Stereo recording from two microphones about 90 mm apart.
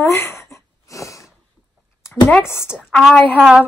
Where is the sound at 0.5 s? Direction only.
35° left (ahead or behind).